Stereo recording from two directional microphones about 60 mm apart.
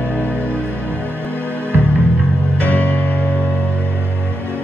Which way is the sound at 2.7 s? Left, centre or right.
Left.